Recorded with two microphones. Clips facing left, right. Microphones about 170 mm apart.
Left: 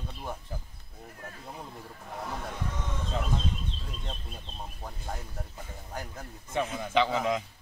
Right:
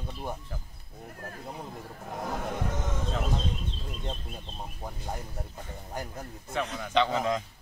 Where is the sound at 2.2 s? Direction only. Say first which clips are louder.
Right 4 dB; 45° right (ahead or behind).